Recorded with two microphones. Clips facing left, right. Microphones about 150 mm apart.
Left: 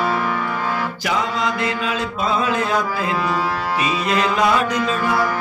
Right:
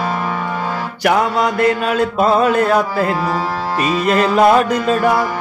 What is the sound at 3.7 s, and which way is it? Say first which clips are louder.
Speech: right 6 dB; 50° right (ahead or behind).